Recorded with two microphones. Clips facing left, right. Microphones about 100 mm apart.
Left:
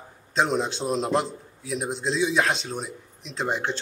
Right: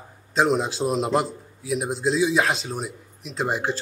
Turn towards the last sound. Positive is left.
turn(degrees=-5)  # may be behind; listen again after turning